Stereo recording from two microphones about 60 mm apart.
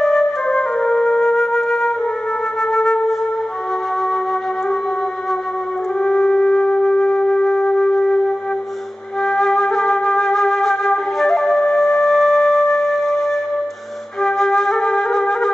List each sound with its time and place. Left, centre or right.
0.0 s flute: centre
5.9 s music: centre
9.2 s flute: centre
14.2 s flute: centre